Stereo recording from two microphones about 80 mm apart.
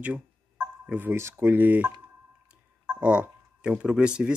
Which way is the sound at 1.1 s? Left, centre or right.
Right.